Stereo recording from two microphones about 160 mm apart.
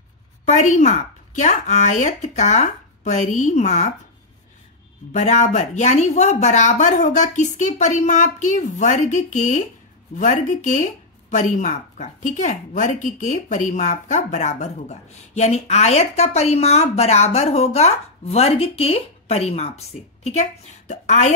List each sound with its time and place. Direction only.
0.5 s speech: 45° left (ahead or behind)
5.1 s speech: 50° left (ahead or behind)